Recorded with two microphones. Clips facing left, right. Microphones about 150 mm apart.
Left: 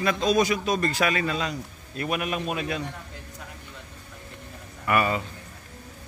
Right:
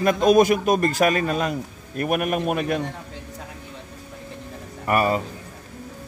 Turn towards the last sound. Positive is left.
turn(degrees=-40)  # may be behind; listen again after turning